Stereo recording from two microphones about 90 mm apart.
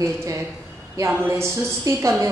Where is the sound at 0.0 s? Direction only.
35° right (ahead or behind).